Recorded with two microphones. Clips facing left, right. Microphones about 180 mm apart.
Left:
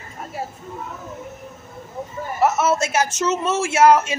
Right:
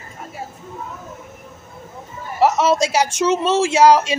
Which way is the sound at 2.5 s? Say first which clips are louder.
Right 3 dB; 15° right (ahead or behind).